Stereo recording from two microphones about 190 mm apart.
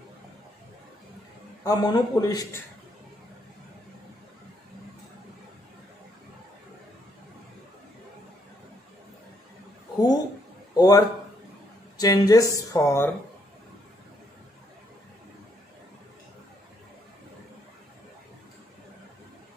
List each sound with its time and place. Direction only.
1.6 s a man's voice: 20° left (ahead or behind)
9.9 s a sound: 20° left (ahead or behind)
10.8 s a man's voice: 20° left (ahead or behind)